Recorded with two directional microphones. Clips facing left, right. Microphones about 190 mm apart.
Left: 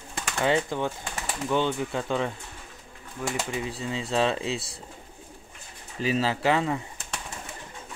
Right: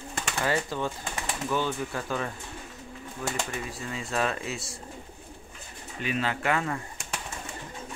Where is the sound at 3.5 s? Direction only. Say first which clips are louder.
Left 4 dB; 20° left (ahead or behind).